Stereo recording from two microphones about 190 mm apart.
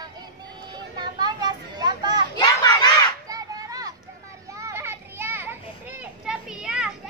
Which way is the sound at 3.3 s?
20° right (ahead or behind).